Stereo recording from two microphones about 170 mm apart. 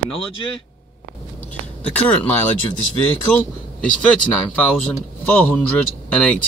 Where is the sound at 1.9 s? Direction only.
10° left (ahead or behind).